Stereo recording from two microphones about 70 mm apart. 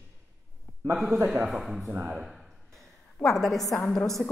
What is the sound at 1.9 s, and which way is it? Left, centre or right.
Speech, right.